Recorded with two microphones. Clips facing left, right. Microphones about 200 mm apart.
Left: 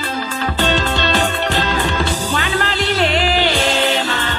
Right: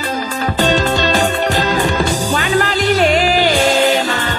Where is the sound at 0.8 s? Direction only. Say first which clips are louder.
Right 3 dB; 45° right (ahead or behind).